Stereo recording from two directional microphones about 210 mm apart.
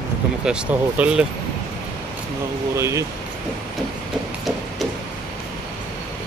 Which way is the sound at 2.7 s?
15° right (ahead or behind).